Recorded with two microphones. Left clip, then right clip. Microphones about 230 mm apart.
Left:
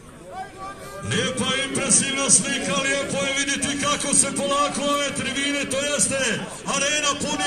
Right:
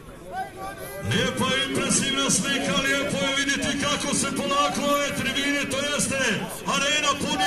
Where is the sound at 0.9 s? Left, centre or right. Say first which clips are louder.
Left 1 dB; centre.